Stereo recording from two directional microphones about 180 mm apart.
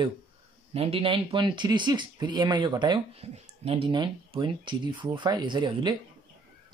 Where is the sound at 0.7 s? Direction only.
30° right (ahead or behind).